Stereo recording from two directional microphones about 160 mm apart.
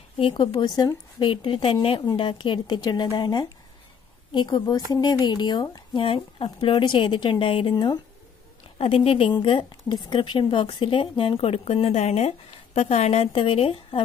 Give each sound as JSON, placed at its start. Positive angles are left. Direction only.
{"t": 0.2, "sound": "a woman's voice", "side_deg": 30}